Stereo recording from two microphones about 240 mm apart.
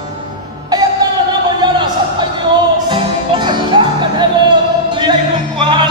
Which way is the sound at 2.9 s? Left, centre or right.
Centre.